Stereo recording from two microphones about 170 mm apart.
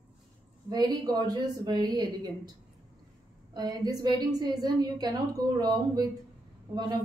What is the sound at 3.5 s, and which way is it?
A woman's voice, 25° right (ahead or behind).